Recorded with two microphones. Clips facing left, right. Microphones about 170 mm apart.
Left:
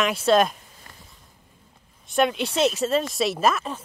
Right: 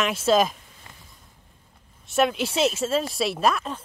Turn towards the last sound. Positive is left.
turn(degrees=0)  # may be behind; listen again after turning